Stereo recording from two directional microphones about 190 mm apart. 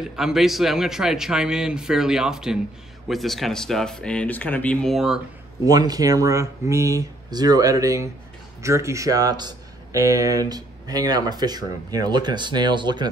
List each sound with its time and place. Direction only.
0.0 s a man's voice: centre (ahead or behind)
5.7 s speech: 20° right (ahead or behind)